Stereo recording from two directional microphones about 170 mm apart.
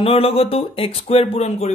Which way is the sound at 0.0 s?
35° left (ahead or behind).